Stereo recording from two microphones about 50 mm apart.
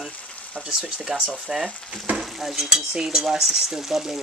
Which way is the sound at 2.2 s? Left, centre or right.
Centre.